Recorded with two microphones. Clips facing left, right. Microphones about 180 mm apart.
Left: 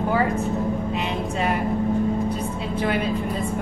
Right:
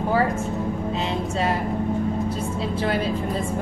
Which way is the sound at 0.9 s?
30° right (ahead or behind).